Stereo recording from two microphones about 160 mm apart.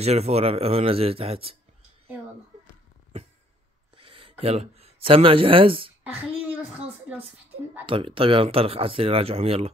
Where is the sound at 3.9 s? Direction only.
35° right (ahead or behind).